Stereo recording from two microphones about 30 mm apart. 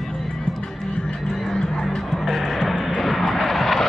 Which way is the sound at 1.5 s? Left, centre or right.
Centre.